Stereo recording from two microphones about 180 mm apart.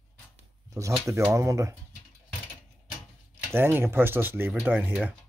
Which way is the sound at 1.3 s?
15° right (ahead or behind).